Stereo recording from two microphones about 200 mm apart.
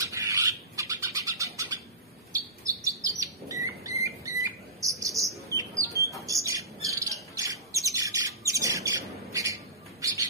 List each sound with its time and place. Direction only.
0.0 s bird: 15° right (ahead or behind)
2.3 s chirp: 15° right (ahead or behind)
6.2 s bird: 15° right (ahead or behind)